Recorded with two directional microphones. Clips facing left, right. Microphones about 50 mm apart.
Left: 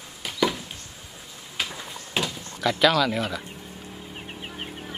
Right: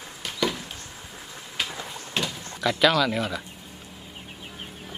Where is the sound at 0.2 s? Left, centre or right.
Centre.